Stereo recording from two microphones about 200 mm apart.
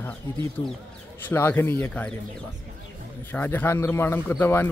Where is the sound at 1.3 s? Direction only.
10° left (ahead or behind).